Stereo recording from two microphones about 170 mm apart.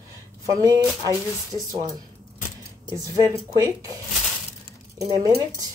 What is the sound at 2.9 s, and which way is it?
Speech, 20° right (ahead or behind).